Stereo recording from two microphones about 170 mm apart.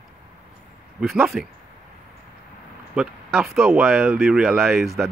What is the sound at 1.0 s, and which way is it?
Speech, centre (ahead or behind).